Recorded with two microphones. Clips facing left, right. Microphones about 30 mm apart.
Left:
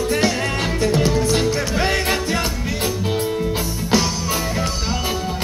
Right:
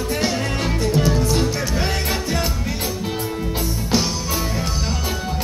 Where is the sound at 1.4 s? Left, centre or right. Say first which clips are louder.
Left 2 dB; left.